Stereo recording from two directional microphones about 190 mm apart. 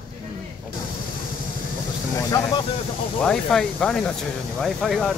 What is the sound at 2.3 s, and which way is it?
Speech, 15° left (ahead or behind).